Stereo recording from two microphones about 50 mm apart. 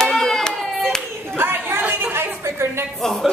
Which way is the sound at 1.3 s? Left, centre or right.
Right.